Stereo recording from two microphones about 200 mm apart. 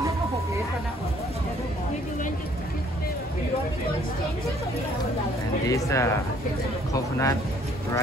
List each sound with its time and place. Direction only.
5.7 s speech: 15° left (ahead or behind)